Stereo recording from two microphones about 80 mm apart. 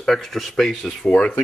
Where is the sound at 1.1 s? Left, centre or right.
Centre.